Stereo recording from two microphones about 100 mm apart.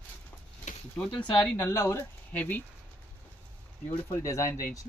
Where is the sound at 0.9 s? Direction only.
10° left (ahead or behind).